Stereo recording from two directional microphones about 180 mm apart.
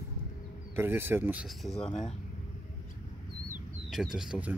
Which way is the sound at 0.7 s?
15° right (ahead or behind).